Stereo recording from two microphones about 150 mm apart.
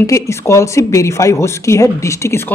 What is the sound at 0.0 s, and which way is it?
Speech, 20° left (ahead or behind).